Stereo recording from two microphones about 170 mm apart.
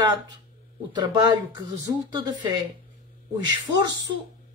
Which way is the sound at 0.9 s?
25° right (ahead or behind).